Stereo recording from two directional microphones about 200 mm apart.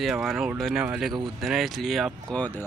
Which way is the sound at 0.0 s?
Centre (ahead or behind).